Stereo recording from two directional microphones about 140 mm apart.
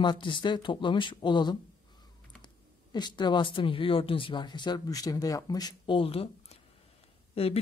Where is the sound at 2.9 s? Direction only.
30° left (ahead or behind).